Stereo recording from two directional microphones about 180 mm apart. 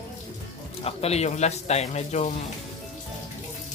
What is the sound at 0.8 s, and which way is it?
Speech, 35° left (ahead or behind).